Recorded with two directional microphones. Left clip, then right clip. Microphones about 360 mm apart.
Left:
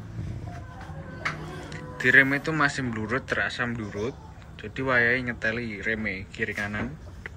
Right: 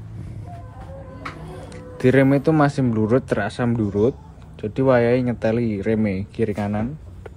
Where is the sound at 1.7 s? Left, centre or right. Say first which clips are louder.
Right 1 dB; centre.